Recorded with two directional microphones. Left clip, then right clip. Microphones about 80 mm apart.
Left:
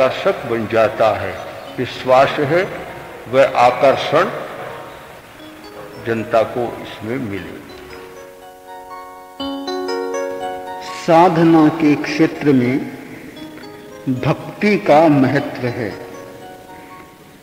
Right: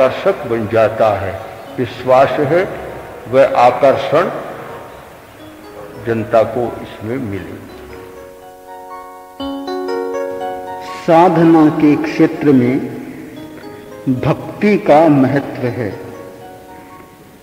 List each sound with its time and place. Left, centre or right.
0.0 s a man's voice: right
6.0 s a man's voice: centre
6.6 s a man's voice: right
9.4 s music: centre
14.2 s a man's voice: right